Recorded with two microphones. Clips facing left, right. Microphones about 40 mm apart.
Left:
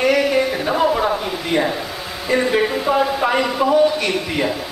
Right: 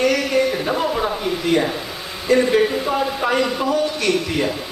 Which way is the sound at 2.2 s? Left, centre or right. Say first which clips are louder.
Right 2 dB; centre.